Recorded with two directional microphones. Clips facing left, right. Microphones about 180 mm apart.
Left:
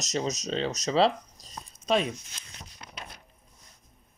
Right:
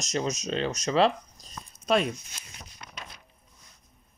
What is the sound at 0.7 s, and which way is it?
Speech, 20° left (ahead or behind).